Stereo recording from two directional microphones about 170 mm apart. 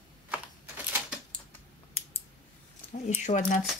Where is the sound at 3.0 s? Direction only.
45° left (ahead or behind).